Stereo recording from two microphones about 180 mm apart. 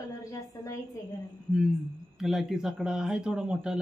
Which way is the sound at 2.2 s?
Centre (ahead or behind).